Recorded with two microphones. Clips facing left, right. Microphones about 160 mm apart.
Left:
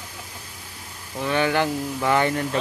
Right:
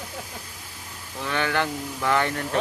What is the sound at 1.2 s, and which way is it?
Speech, 15° left (ahead or behind).